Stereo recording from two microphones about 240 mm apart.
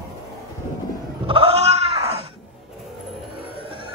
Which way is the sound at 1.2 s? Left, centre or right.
Right.